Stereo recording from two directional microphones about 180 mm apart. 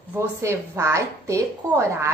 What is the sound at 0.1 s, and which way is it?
A woman's voice, 15° right (ahead or behind).